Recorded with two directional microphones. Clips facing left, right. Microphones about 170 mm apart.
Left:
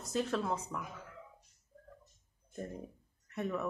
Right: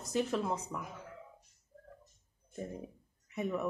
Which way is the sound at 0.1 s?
5° right (ahead or behind).